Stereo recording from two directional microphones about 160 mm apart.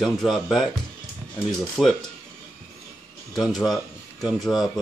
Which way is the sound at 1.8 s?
Centre (ahead or behind).